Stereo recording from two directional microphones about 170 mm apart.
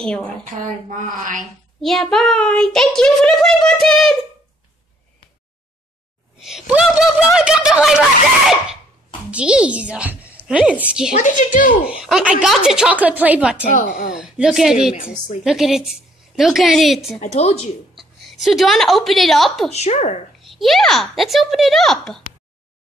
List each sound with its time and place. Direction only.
0.0 s a child's voice: 5° left (ahead or behind)
0.5 s speech: 55° right (ahead or behind)
1.4 s a child's voice: centre (ahead or behind)
6.4 s speech: 5° right (ahead or behind)
9.3 s a woman's voice: 5° right (ahead or behind)
11.1 s a woman's voice: 50° left (ahead or behind)
11.8 s a child's voice: 5° right (ahead or behind)
17.2 s a woman's voice: 40° left (ahead or behind)
17.9 s a woman's voice: centre (ahead or behind)
19.7 s a woman's voice: 40° left (ahead or behind)
20.3 s a child's voice: centre (ahead or behind)